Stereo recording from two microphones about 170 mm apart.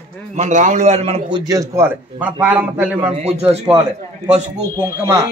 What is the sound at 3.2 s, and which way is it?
Speech, 40° right (ahead or behind).